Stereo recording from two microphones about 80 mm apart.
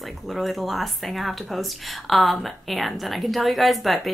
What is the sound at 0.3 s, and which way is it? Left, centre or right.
Speech, centre.